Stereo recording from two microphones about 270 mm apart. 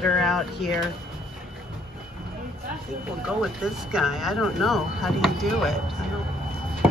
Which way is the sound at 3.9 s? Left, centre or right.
Centre.